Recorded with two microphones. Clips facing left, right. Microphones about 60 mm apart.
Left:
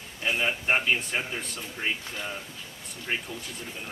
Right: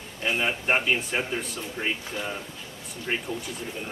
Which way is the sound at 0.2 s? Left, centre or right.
Centre.